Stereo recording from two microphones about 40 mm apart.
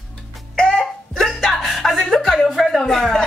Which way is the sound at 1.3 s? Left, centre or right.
Centre.